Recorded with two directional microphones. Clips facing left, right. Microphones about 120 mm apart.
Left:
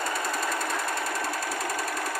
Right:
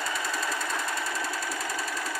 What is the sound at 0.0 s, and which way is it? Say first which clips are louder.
Jackhammer: left 2 dB; 50° left (ahead or behind).